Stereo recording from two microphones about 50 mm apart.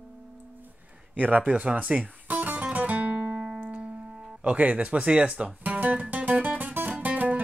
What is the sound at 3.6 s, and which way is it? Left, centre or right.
Music, right.